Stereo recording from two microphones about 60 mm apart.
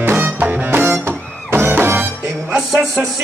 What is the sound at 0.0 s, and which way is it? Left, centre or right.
Music, right.